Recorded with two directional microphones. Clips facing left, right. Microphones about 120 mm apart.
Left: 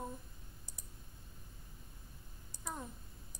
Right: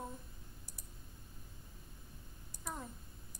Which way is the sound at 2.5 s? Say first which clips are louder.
Even; 20° left (ahead or behind).